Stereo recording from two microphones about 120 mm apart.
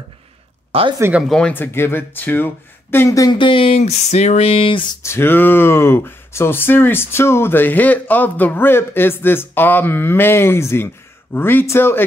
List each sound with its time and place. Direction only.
0.7 s speech: 50° right (ahead or behind)
1.5 s speech: 20° left (ahead or behind)
3.3 s a sound: 45° left (ahead or behind)
5.0 s a man's voice: 20° left (ahead or behind)